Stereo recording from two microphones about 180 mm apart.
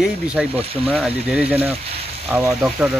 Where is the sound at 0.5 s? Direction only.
30° right (ahead or behind).